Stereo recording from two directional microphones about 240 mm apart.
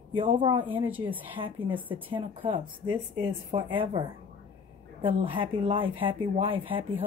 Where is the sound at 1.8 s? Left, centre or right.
Centre.